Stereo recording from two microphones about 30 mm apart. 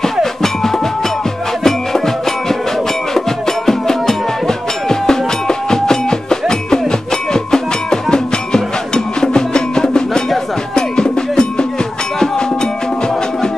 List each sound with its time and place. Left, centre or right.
0.0 s music: centre